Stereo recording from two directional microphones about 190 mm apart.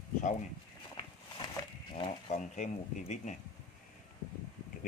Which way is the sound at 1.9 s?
35° left (ahead or behind).